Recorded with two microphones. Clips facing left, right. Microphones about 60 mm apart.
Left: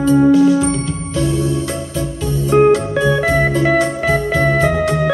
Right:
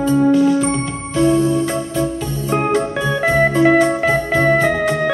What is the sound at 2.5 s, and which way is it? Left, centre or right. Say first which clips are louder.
Music: left 6 dB; centre.